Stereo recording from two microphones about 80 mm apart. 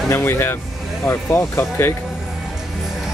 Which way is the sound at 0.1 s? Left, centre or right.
Left.